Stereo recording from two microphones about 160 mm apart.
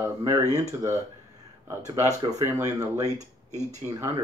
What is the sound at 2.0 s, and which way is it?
Speech, 45° right (ahead or behind).